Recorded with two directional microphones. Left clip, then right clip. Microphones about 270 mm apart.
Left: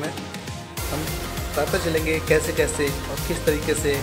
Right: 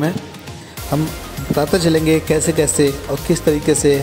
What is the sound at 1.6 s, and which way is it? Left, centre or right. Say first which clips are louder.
Speech: right 7 dB; right.